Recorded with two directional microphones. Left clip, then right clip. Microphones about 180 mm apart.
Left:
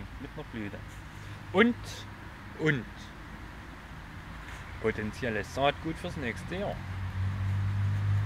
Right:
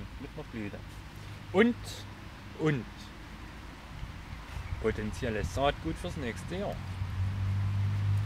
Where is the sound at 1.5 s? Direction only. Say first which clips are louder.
Left 1 dB; 15° right (ahead or behind).